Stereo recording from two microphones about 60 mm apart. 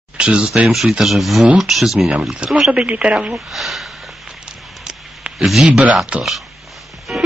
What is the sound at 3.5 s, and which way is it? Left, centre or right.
Speech, centre.